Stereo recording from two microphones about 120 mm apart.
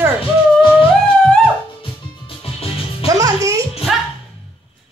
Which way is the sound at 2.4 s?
55° left (ahead or behind).